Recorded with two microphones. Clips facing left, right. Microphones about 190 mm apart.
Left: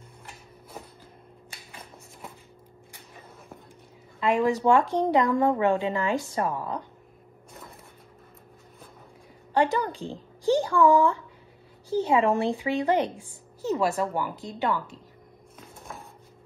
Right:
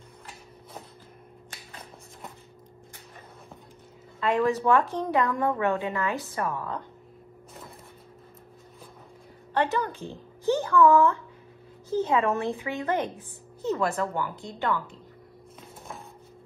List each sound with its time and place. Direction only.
4.2 s a woman's voice: 15° left (ahead or behind)
5.4 s a woman's voice: 30° left (ahead or behind)
6.1 s a woman's voice: 15° left (ahead or behind)
9.6 s speech: 15° left (ahead or behind)
12.2 s speech: 30° left (ahead or behind)
12.8 s a woman's voice: 15° left (ahead or behind)